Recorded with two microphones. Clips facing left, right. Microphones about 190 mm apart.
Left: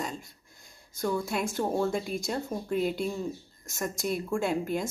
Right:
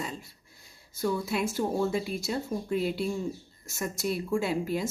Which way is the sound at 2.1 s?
45° left (ahead or behind).